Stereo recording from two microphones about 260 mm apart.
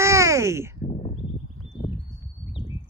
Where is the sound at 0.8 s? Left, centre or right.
Left.